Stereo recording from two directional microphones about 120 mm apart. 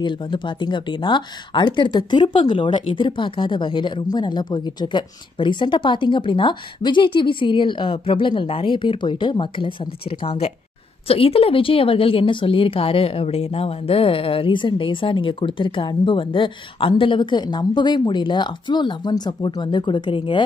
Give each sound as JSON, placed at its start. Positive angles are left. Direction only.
{"t": 0.0, "sound": "speech", "side_deg": 45}